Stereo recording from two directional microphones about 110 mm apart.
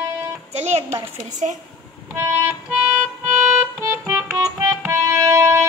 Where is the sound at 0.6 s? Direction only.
75° right (ahead or behind).